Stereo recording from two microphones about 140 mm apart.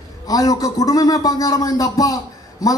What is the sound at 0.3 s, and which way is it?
A man's voice, 25° left (ahead or behind).